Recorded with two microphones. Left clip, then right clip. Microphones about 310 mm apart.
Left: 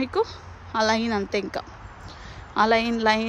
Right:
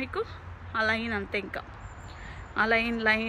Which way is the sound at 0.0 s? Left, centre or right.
Centre.